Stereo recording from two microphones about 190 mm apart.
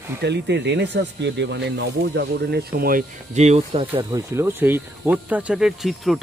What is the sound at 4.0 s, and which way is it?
Speech, 20° right (ahead or behind).